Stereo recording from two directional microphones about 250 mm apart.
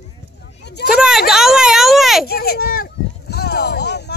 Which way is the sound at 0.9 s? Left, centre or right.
Centre.